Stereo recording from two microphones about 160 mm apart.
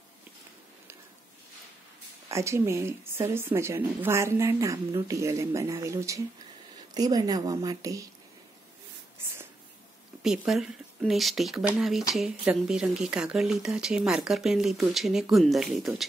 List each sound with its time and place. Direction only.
2.2 s a woman's voice: 20° right (ahead or behind)
10.2 s speech: 5° right (ahead or behind)